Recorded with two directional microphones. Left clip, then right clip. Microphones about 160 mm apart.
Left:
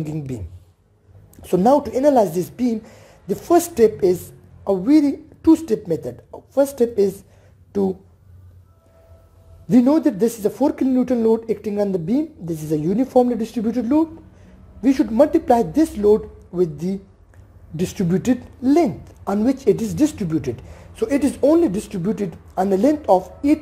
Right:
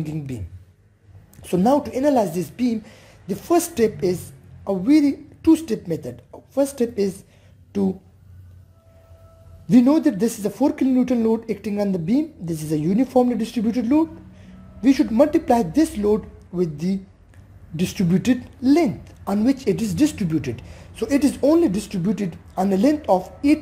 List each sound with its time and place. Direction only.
0.0 s a woman's voice: 15° left (ahead or behind)
1.3 s a sound: 15° left (ahead or behind)
1.8 s a woman's voice: 20° left (ahead or behind)
4.6 s a woman's voice: centre (ahead or behind)
9.7 s a woman's voice: centre (ahead or behind)